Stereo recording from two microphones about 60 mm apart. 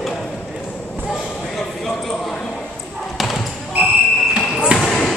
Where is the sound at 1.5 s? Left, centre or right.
Centre.